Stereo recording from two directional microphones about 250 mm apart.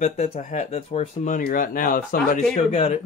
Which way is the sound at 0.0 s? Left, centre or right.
Left.